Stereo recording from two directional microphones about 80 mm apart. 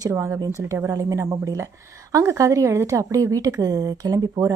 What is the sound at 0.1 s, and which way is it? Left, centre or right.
A woman's voice, right.